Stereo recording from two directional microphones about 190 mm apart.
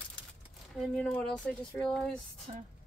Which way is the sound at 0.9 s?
5° left (ahead or behind).